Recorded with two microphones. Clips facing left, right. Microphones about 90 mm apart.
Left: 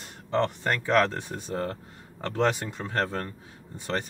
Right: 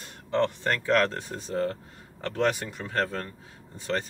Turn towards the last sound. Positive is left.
turn(degrees=20)  # may be behind; listen again after turning